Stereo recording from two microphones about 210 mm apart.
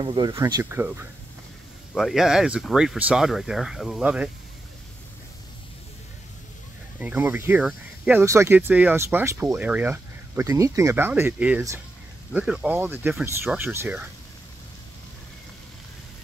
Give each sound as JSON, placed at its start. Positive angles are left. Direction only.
{"t": 0.0, "sound": "speech", "side_deg": -20}
{"t": 7.0, "sound": "speech", "side_deg": -10}